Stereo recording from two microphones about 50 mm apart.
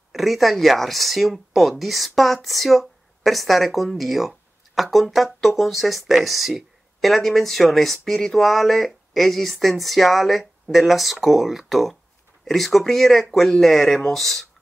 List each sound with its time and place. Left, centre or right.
0.1 s speech: centre